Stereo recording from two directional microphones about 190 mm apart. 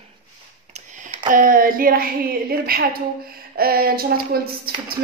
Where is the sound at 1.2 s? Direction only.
45° right (ahead or behind).